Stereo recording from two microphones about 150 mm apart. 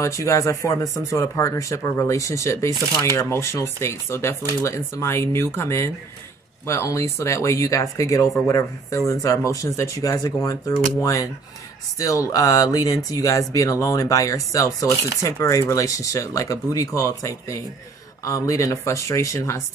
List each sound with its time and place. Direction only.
0.0 s speech: 20° left (ahead or behind)